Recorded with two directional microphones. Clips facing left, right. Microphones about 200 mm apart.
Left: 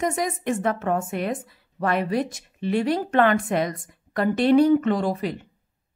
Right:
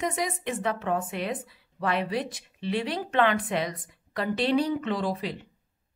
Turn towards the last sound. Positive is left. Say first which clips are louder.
# left 4 dB
turn(degrees=50)  # may be behind; listen again after turning